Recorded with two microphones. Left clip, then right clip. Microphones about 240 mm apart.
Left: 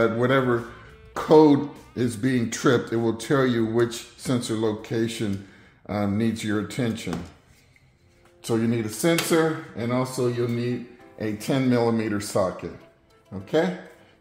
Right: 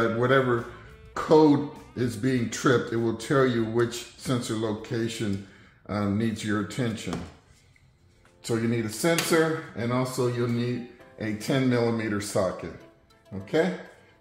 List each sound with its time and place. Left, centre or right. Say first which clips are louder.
0.0 s speech: left 2 dB; left
8.4 s speech: left 3 dB; left